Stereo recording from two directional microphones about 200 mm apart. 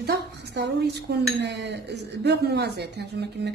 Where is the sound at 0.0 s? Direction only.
55° right (ahead or behind).